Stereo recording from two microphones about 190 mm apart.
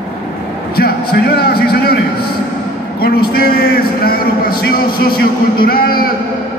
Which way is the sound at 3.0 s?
55° left (ahead or behind).